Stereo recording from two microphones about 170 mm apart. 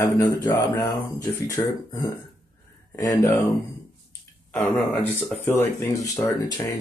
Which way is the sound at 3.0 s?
20° left (ahead or behind).